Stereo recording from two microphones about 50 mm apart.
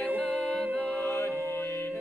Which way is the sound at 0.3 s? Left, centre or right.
Centre.